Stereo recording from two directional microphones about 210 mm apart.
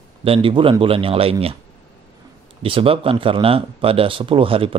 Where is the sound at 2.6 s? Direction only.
25° right (ahead or behind).